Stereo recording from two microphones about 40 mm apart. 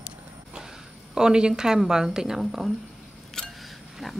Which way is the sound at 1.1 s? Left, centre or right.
Centre.